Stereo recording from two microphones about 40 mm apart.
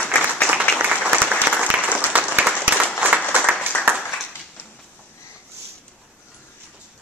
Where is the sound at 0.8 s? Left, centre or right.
Right.